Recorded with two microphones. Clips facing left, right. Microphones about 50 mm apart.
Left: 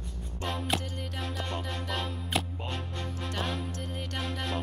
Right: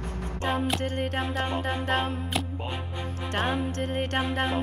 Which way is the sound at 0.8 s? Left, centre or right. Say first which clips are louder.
Right 10 dB; right.